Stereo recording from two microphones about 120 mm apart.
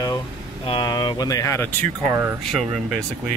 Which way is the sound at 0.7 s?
40° left (ahead or behind).